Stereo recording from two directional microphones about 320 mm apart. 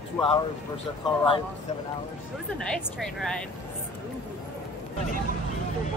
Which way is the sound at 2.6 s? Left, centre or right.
Centre.